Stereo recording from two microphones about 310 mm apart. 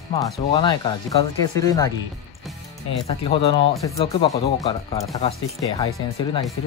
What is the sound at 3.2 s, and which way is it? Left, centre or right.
Speech, centre.